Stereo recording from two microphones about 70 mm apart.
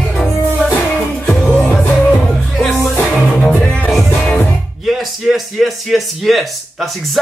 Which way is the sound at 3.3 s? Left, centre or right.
Centre.